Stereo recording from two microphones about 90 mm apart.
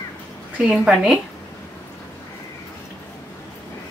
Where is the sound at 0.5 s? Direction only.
5° right (ahead or behind).